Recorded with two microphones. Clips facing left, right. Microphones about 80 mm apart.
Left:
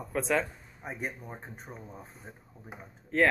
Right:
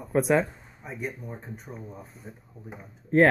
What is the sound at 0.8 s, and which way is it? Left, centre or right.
Speech, left.